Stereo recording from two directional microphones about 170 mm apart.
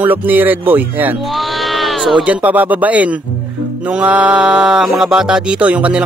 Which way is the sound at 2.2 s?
10° right (ahead or behind).